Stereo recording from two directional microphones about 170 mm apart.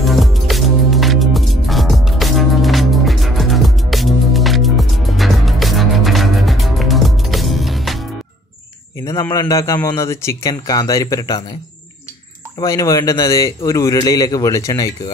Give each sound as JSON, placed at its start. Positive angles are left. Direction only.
{"t": 0.0, "sound": "music", "side_deg": 0}
{"t": 9.0, "sound": "a man's voice", "side_deg": 20}
{"t": 12.5, "sound": "a man's voice", "side_deg": 20}